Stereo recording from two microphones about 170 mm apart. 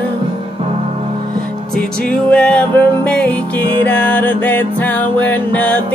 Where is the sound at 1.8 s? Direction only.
5° left (ahead or behind).